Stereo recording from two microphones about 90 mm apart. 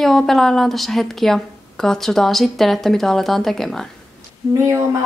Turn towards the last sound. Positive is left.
turn(degrees=-30)  # may be behind; listen again after turning